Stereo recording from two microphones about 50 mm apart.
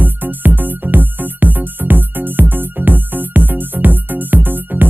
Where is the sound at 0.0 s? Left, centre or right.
Right.